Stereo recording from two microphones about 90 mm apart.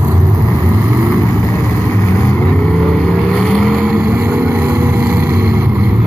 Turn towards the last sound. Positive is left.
turn(degrees=-30)  # may be behind; listen again after turning